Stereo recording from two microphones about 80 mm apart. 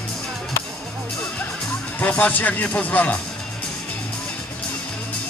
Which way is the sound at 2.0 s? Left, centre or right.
Left.